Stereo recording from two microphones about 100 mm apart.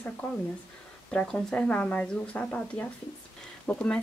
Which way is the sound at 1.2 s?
5° left (ahead or behind).